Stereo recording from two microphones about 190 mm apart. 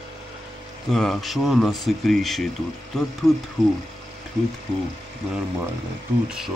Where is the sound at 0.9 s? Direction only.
Centre (ahead or behind).